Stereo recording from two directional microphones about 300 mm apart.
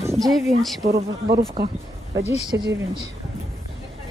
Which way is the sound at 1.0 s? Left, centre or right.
Right.